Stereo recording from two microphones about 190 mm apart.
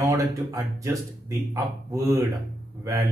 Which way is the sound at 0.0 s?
15° right (ahead or behind).